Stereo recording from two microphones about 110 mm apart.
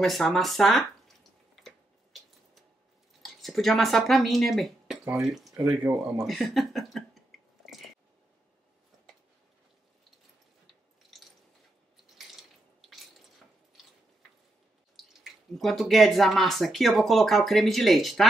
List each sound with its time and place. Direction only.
0.0 s drip: centre (ahead or behind)
3.2 s speech: centre (ahead or behind)
5.8 s speech: 20° right (ahead or behind)
6.2 s a sound: centre (ahead or behind)
15.1 s speech: centre (ahead or behind)